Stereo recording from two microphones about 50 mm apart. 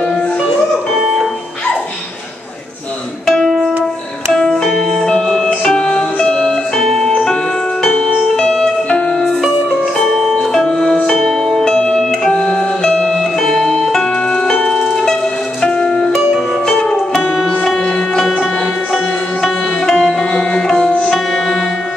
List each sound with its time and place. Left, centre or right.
3.4 s music: centre
4.3 s music: centre
6.8 s music: centre
8.4 s music: centre
9.2 s music: centre
11.7 s music: centre
13.1 s music: centre
14.3 s music: centre